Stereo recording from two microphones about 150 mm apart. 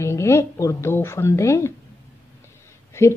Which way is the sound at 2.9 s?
20° left (ahead or behind).